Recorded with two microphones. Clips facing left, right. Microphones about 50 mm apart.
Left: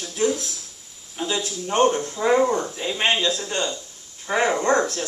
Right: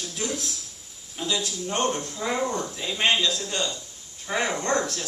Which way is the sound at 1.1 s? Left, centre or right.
Centre.